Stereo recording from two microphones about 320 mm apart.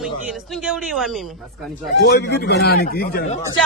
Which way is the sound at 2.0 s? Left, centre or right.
Left.